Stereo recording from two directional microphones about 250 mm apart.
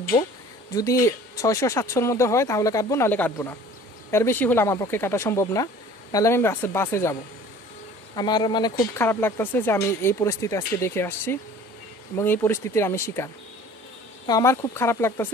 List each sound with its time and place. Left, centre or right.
0.7 s speech: centre
8.2 s speech: centre